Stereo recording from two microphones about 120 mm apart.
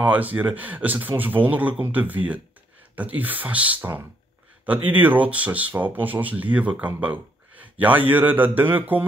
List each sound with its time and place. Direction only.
0.0 s speech: 15° right (ahead or behind)
7.0 s a sound: 10° right (ahead or behind)
8.1 s speech: 15° right (ahead or behind)